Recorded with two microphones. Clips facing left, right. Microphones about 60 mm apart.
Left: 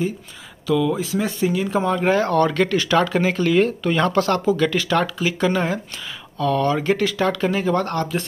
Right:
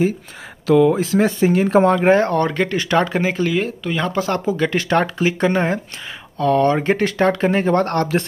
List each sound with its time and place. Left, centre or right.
0.7 s speech: right
2.0 s speech: right; by 4.4 s centre
4.6 s speech: right